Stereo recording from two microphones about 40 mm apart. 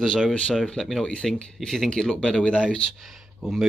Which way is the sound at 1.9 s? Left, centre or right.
Centre.